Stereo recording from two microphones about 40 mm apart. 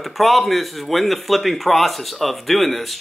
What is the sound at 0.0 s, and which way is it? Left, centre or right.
Speech, centre.